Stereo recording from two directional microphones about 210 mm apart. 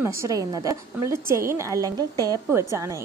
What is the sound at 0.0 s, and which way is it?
A woman's voice, 15° right (ahead or behind).